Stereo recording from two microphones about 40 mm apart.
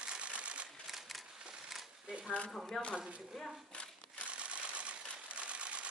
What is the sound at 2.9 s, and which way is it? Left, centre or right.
Speech, right.